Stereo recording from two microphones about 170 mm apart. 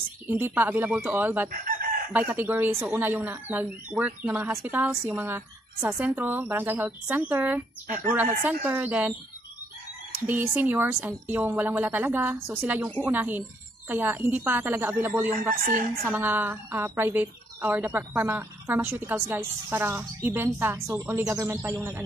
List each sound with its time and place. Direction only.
0.3 s speech: 10° right (ahead or behind)
1.5 s chicken: 55° right (ahead or behind)
2.1 s speech: 10° right (ahead or behind)
10.1 s speech: 10° right (ahead or behind)